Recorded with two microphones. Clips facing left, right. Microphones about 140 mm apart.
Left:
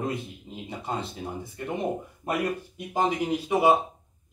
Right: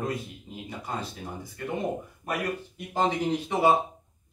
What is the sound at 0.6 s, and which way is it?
Speech, 25° left (ahead or behind).